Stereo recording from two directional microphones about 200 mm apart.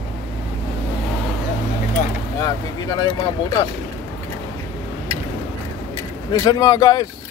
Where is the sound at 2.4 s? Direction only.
15° left (ahead or behind).